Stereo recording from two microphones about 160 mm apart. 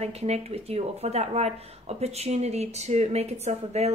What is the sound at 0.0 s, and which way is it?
Speech, 40° right (ahead or behind).